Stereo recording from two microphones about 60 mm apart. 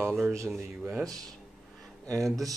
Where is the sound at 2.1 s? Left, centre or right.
Right.